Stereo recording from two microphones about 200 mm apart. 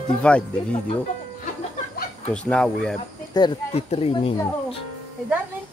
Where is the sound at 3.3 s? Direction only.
20° left (ahead or behind).